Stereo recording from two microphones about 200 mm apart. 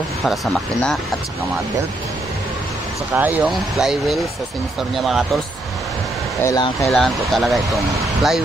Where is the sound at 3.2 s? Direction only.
10° right (ahead or behind).